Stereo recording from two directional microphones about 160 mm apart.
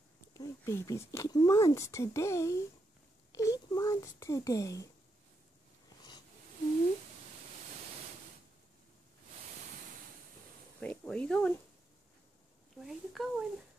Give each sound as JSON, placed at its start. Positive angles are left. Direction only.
{"t": 0.3, "sound": "speech", "side_deg": 20}
{"t": 10.8, "sound": "speech", "side_deg": 10}
{"t": 12.8, "sound": "speech", "side_deg": 0}